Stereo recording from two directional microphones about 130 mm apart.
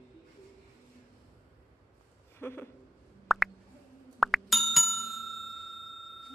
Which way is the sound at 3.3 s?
Centre (ahead or behind).